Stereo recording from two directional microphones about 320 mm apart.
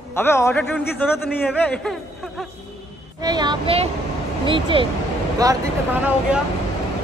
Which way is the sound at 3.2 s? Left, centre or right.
Centre.